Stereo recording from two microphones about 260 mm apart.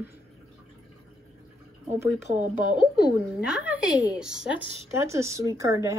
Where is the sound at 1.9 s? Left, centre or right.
Centre.